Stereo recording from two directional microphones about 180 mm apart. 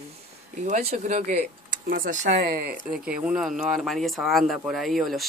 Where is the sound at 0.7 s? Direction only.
40° right (ahead or behind).